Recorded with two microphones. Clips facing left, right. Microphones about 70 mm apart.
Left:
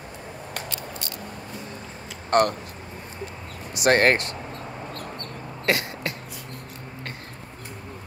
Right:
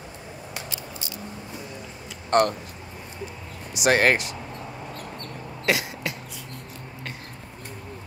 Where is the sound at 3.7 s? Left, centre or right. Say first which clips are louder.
Left 1 dB; centre.